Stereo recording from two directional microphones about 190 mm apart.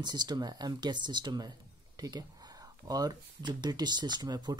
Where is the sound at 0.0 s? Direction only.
20° right (ahead or behind).